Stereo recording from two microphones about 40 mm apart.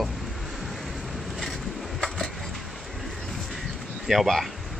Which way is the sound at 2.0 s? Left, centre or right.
Centre.